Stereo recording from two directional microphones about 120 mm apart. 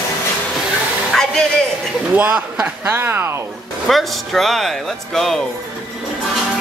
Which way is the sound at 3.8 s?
Centre (ahead or behind).